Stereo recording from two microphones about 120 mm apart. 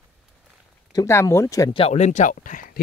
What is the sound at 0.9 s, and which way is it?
Speech, 25° left (ahead or behind).